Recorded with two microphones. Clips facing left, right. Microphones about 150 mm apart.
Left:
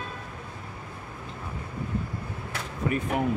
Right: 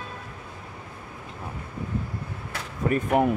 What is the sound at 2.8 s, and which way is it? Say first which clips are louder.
Speech: right 5 dB; 50° right (ahead or behind).